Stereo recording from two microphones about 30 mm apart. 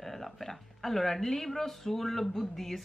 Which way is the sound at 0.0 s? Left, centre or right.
Centre.